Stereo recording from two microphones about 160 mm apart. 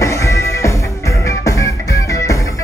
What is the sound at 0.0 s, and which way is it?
Music, 20° left (ahead or behind).